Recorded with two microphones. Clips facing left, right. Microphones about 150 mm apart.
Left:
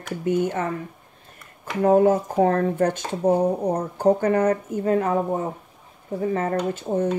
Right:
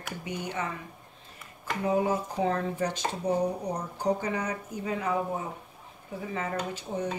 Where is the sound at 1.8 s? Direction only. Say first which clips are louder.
Left 10 dB; 55° left (ahead or behind).